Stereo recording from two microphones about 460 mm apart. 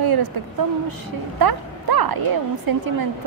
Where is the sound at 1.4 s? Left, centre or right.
Right.